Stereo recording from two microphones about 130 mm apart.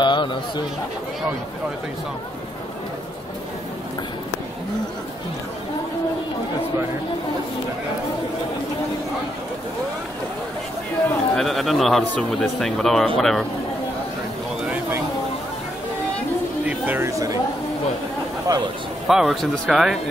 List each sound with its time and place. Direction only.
0.0 s chatter: 35° left (ahead or behind)
11.3 s speech: centre (ahead or behind)
16.6 s speech: 15° right (ahead or behind)
18.5 s a man's voice: 30° right (ahead or behind)
19.0 s speech: centre (ahead or behind)